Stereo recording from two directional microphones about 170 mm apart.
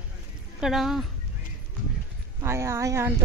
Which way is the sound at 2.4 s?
15° right (ahead or behind).